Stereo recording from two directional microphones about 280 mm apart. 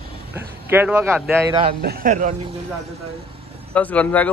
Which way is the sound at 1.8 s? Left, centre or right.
Right.